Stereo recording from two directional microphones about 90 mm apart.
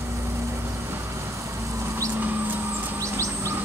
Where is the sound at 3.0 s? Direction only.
35° right (ahead or behind).